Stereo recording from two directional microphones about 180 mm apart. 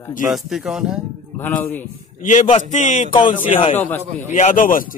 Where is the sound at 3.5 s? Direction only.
30° left (ahead or behind).